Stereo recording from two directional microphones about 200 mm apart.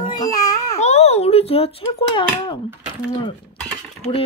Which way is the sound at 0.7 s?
35° left (ahead or behind).